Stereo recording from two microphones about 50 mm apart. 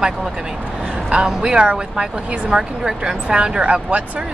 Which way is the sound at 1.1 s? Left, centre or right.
Centre.